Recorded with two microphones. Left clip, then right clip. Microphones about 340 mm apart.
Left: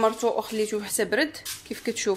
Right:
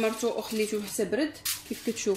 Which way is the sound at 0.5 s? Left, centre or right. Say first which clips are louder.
Left 3 dB; left.